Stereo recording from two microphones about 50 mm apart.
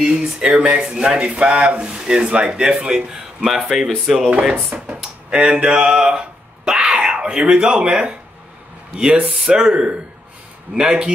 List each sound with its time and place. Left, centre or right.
0.0 s speech: centre